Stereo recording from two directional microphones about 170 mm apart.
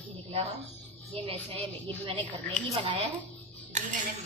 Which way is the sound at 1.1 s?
30° right (ahead or behind).